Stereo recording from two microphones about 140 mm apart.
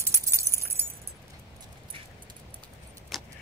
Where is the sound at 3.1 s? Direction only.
Centre (ahead or behind).